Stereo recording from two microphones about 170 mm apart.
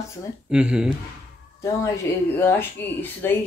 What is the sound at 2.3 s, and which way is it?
Speech, 15° left (ahead or behind).